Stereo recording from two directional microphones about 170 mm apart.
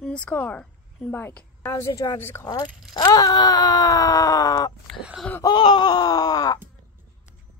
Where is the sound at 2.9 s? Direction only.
25° left (ahead or behind).